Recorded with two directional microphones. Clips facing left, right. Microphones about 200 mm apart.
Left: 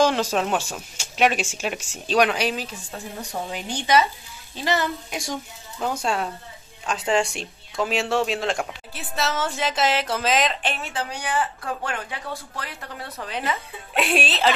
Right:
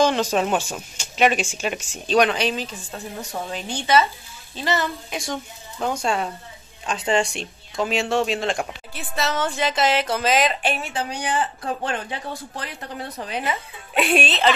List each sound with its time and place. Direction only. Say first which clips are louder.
0.0 s a woman's voice: right 1 dB; 5° left (ahead or behind)
5.8 s speech: right 1 dB; centre (ahead or behind); by 13.6 s 15° right (ahead or behind)
13.9 s speech: right 2 dB; centre (ahead or behind)